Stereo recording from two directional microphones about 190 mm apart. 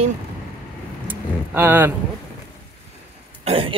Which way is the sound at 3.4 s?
30° right (ahead or behind).